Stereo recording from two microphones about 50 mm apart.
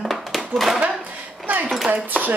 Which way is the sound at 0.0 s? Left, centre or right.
Centre.